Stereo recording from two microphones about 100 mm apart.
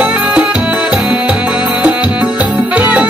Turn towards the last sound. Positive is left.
turn(degrees=-15)  # may be behind; listen again after turning